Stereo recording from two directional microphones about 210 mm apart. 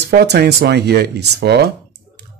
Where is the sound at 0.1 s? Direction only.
50° right (ahead or behind).